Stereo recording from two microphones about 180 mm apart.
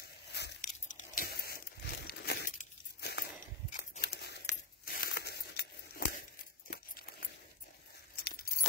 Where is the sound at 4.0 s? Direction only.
60° left (ahead or behind).